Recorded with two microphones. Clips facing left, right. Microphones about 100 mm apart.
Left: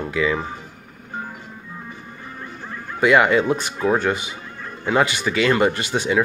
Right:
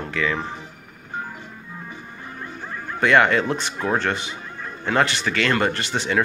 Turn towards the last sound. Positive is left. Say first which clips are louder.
# left 3 dB
turn(degrees=15)  # may be behind; listen again after turning